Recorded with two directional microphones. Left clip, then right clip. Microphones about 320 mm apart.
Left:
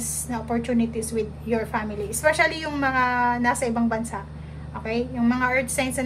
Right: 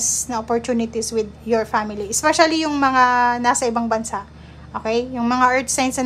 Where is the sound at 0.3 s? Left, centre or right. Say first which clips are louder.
Right 3 dB; centre.